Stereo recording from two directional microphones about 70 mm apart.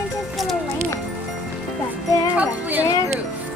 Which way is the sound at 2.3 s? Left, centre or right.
Right.